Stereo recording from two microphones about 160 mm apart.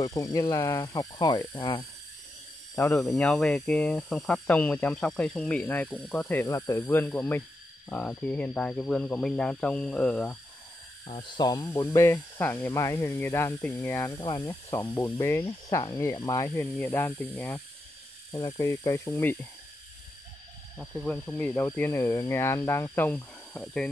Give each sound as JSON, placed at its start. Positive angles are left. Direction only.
{"t": 0.0, "sound": "speech", "side_deg": 20}
{"t": 2.7, "sound": "speech", "side_deg": 10}
{"t": 11.1, "sound": "speech", "side_deg": 35}
{"t": 20.7, "sound": "speech", "side_deg": 0}